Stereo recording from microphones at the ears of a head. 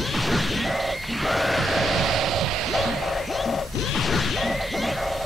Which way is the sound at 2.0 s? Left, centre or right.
Right.